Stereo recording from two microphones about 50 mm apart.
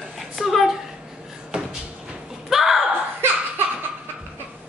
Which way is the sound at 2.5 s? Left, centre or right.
Centre.